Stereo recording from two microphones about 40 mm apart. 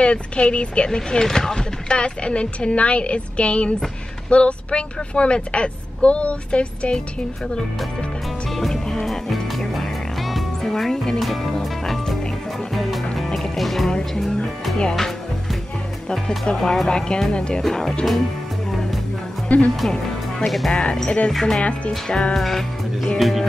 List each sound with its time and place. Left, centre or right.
0.0 s speech: left
0.8 s speech: centre
8.9 s music: centre
13.8 s speech: centre
16.5 s speech: centre
16.8 s speech: left
17.6 s speech: centre
19.5 s speech: left
20.4 s music: centre
20.7 s speech: centre
21.3 s speech: centre
21.5 s speech: left
22.3 s music: centre